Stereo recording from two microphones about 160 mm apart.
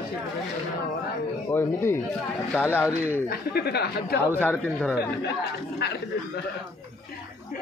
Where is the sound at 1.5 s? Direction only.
15° left (ahead or behind).